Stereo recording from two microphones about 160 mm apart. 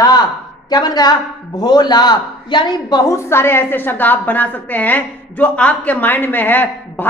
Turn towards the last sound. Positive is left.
turn(degrees=10)  # may be behind; listen again after turning